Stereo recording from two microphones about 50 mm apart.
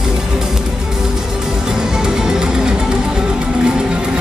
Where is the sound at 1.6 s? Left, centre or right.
Centre.